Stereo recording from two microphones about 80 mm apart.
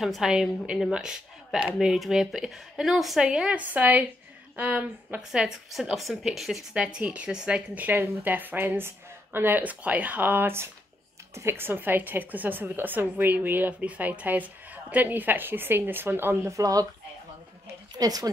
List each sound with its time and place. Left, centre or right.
0.0 s a woman's voice: centre
5.3 s speech: centre
6.7 s a woman's voice: centre
7.7 s a woman's voice: right
16.5 s a woman's voice: right
17.9 s a woman's voice: right